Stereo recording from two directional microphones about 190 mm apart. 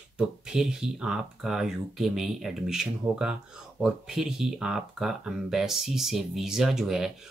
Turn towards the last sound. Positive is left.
turn(degrees=0)  # may be behind; listen again after turning